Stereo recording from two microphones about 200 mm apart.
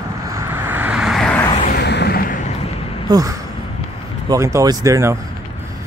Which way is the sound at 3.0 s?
20° right (ahead or behind).